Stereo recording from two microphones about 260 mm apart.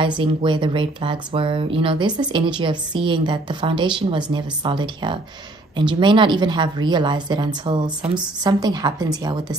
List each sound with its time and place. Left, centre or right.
0.2 s speech: centre